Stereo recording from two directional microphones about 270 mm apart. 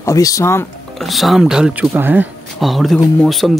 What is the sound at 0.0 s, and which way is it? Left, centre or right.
Speech, centre.